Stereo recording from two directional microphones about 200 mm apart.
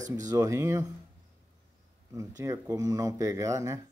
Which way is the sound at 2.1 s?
15° right (ahead or behind).